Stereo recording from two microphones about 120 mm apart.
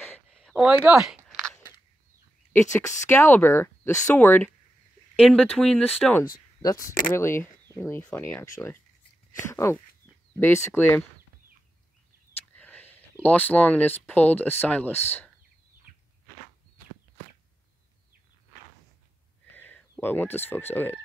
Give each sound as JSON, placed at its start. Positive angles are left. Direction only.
{"t": 0.3, "sound": "a sound", "side_deg": 5}
{"t": 2.5, "sound": "speech", "side_deg": 25}
{"t": 5.2, "sound": "speech", "side_deg": 5}
{"t": 6.6, "sound": "speech", "side_deg": 30}
{"t": 12.5, "sound": "a sound", "side_deg": 10}
{"t": 13.2, "sound": "speech", "side_deg": 10}
{"t": 19.5, "sound": "speech", "side_deg": 15}